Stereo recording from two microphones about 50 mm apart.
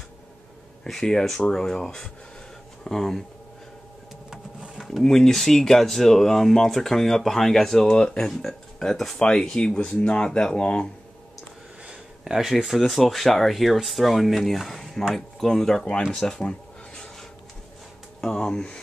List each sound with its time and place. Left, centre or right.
1.5 s speech: centre
4.3 s a sound: centre
4.8 s speech: centre
11.8 s speech: centre
16.1 s a sound: centre
18.2 s speech: centre